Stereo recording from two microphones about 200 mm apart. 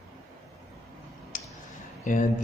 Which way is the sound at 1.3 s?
40° left (ahead or behind).